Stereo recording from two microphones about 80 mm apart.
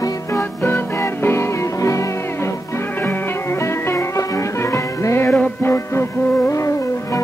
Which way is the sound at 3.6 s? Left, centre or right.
Left.